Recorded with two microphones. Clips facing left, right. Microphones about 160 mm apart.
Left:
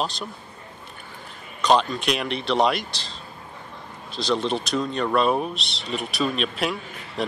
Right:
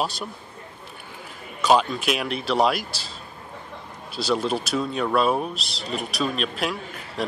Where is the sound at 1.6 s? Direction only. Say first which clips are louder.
Even; 5° right (ahead or behind).